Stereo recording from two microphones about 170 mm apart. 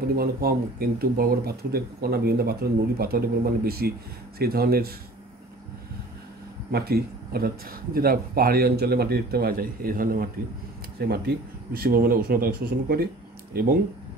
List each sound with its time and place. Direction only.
0.1 s speech: 60° right (ahead or behind)
6.7 s speech: 65° right (ahead or behind)